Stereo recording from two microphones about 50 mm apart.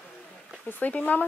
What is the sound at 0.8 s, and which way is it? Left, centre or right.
Speech, left.